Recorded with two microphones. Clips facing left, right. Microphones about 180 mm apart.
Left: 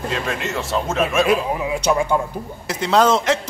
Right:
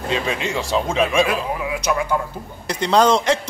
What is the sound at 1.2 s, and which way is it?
Speech, 30° left (ahead or behind).